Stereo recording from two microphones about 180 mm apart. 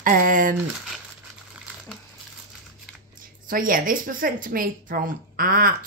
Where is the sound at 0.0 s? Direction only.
50° right (ahead or behind).